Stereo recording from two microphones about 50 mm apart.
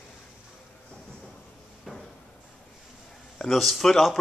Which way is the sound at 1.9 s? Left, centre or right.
Centre.